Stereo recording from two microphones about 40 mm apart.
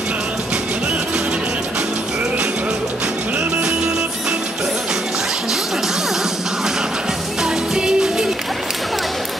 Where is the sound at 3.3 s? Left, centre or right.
Centre.